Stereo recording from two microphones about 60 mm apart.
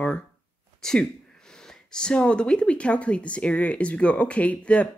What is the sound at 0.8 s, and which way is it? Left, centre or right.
Speech, centre.